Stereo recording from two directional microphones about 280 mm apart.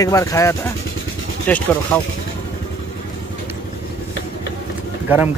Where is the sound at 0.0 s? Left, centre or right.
Centre.